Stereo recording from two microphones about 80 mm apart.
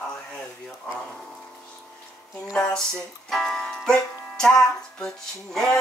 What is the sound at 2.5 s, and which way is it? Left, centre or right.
Speech, centre.